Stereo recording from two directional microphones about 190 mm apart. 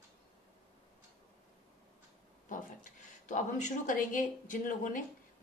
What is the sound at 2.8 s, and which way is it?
Speech, 40° left (ahead or behind).